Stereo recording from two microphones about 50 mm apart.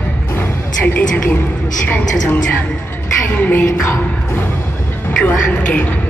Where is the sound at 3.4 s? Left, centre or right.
Left.